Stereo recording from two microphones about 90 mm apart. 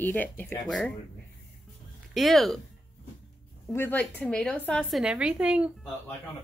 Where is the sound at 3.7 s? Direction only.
25° left (ahead or behind).